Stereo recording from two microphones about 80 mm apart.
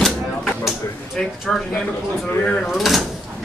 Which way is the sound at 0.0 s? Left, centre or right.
Centre.